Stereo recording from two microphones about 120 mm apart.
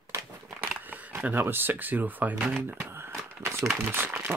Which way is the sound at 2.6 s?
20° right (ahead or behind).